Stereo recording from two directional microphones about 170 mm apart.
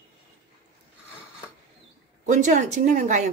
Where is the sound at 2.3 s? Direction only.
45° right (ahead or behind).